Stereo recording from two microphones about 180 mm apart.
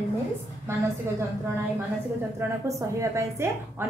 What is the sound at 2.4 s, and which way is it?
Speech, 15° right (ahead or behind).